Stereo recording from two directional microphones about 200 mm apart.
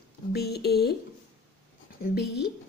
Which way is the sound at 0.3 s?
55° left (ahead or behind).